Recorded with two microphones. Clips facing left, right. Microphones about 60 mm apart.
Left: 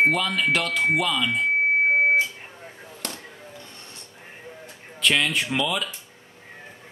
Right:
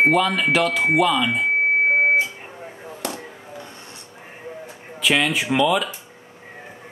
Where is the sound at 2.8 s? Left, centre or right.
Centre.